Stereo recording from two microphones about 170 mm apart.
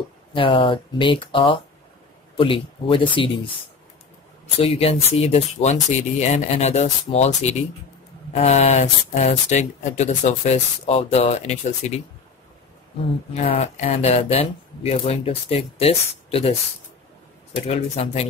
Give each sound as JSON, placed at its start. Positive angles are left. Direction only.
{"t": 0.3, "sound": "speech", "side_deg": 30}
{"t": 4.6, "sound": "speech", "side_deg": 35}
{"t": 13.3, "sound": "speech", "side_deg": 40}
{"t": 17.6, "sound": "speech", "side_deg": 40}